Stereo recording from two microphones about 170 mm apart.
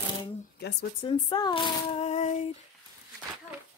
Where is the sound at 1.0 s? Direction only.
25° left (ahead or behind).